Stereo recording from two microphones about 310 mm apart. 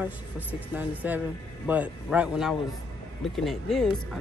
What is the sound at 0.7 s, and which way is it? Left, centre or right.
Speech, centre.